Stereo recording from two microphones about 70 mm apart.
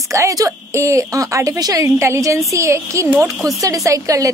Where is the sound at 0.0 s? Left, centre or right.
Right.